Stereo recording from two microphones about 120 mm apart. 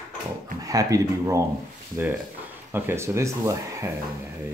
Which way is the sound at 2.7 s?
20° right (ahead or behind).